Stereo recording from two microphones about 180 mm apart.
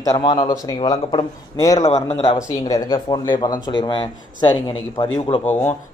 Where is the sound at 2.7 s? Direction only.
20° left (ahead or behind).